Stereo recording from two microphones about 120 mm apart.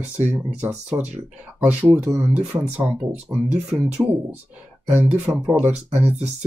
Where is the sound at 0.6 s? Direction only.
15° right (ahead or behind).